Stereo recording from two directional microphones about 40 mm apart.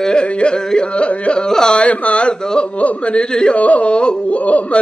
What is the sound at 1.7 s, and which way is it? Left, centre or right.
Speech, left.